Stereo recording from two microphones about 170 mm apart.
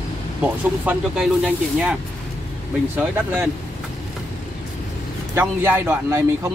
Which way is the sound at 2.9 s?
10° right (ahead or behind).